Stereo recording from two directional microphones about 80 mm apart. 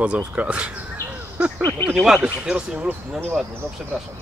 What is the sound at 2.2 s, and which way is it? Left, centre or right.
Speech, centre.